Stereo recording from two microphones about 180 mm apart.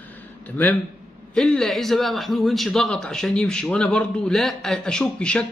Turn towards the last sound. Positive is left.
turn(degrees=5)  # may be behind; listen again after turning